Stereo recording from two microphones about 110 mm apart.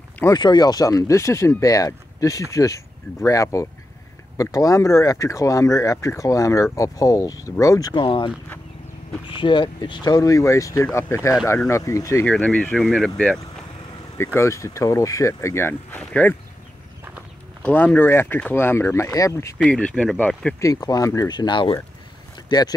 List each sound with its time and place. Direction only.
0.3 s speech: 40° left (ahead or behind)
7.9 s speech: 45° left (ahead or behind)
9.3 s speech: 45° left (ahead or behind); by 12.3 s 25° left (ahead or behind)
12.3 s speech: 10° left (ahead or behind)
12.7 s speech: centre (ahead or behind)
14.1 s speech: 25° left (ahead or behind)
16.0 s speech: 10° left (ahead or behind)
17.6 s speech: 15° left (ahead or behind)
19.7 s speech: 10° left (ahead or behind)
20.6 s speech: 35° left (ahead or behind)